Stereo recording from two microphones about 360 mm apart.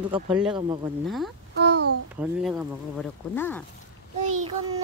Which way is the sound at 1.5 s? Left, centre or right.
Right.